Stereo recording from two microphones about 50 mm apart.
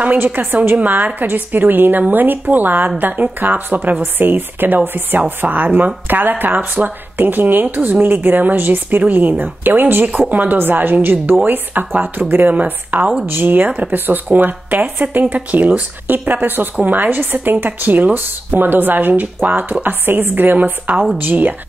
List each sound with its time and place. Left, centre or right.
0.0 s speech: right
12.5 s speech: right
13.3 s speech: right